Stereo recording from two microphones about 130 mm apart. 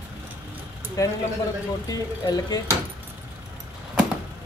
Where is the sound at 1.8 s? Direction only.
30° left (ahead or behind).